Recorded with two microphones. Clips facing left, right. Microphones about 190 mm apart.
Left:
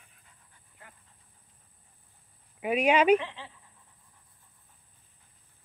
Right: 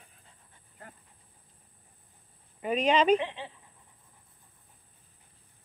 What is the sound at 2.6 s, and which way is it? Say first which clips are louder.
Speech: left 1 dB; 10° left (ahead or behind).